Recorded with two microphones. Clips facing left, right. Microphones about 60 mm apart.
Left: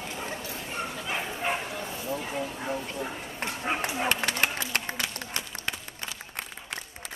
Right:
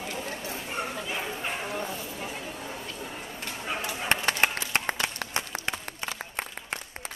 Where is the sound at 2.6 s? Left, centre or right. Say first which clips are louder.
Left 5 dB; left.